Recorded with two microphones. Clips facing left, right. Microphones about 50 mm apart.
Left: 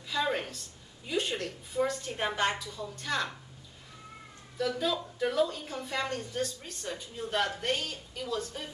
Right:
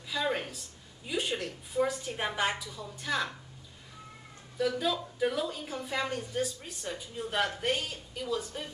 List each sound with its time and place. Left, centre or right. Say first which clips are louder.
0.1 s a woman's voice: left 1 dB; centre
4.6 s a woman's voice: right 1 dB; centre